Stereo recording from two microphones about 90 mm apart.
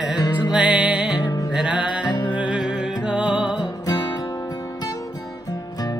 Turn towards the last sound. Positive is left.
turn(degrees=45)  # may be behind; listen again after turning